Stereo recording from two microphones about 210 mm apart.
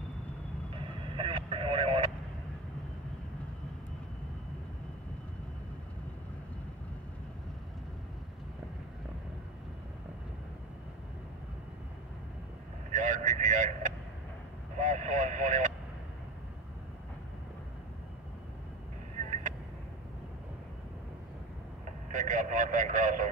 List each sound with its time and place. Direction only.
0.7 s vehicle: 25° right (ahead or behind)
12.9 s vehicle: 35° right (ahead or behind)
22.1 s a sound: 35° right (ahead or behind)